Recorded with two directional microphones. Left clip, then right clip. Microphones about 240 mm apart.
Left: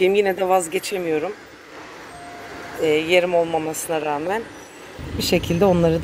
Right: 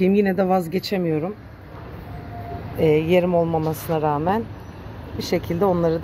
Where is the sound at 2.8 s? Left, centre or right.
Centre.